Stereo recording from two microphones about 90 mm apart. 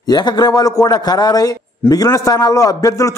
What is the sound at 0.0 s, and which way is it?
A man's voice, 50° left (ahead or behind).